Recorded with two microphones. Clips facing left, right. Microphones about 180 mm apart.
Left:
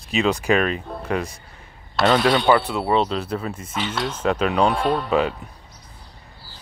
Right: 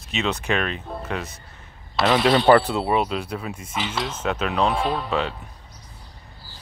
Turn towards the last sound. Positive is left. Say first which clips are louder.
# left 4 dB
turn(degrees=0)  # may be behind; listen again after turning